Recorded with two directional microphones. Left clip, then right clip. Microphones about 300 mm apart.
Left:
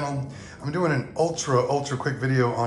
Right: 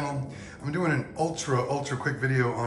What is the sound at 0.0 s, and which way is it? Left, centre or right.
Speech, centre.